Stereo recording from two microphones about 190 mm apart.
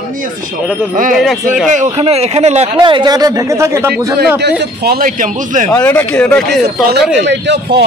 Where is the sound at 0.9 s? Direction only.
45° right (ahead or behind); by 4.1 s 15° right (ahead or behind).